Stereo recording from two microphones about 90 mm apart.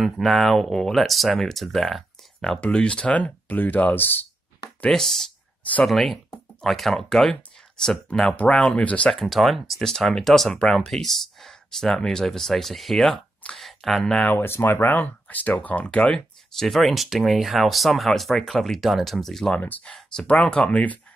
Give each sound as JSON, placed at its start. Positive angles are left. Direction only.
{"t": 0.0, "sound": "speech", "side_deg": 0}
{"t": 4.8, "sound": "speech", "side_deg": 5}
{"t": 9.2, "sound": "speech", "side_deg": 0}
{"t": 14.2, "sound": "speech", "side_deg": 25}
{"t": 16.5, "sound": "speech", "side_deg": 0}
{"t": 19.6, "sound": "speech", "side_deg": 20}